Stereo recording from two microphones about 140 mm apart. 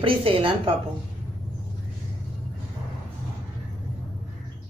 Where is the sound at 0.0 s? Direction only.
40° right (ahead or behind).